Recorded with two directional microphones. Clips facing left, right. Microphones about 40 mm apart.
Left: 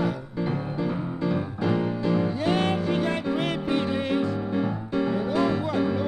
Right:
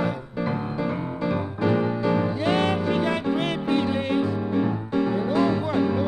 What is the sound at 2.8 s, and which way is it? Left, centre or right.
Music, right.